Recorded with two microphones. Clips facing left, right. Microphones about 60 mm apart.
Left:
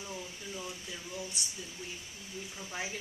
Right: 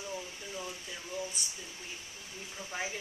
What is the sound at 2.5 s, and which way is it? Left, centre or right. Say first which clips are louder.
Speech: right 2 dB; centre.